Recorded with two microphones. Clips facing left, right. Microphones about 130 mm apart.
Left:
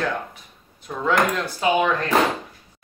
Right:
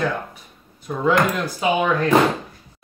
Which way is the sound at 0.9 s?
5° right (ahead or behind).